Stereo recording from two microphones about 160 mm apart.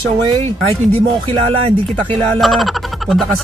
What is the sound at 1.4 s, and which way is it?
Speech, 35° right (ahead or behind).